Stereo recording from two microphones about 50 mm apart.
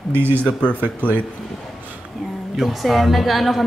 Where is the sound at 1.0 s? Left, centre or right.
Left.